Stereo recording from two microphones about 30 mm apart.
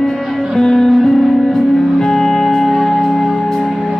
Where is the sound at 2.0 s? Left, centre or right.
Centre.